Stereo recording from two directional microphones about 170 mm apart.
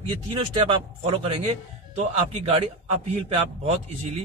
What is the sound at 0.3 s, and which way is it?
A man's voice, 35° right (ahead or behind).